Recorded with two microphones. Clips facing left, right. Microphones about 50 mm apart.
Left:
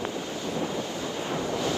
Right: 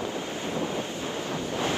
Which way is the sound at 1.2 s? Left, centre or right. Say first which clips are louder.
Left 4 dB; left.